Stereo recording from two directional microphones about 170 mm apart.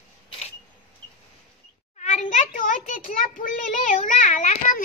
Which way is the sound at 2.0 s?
45° left (ahead or behind).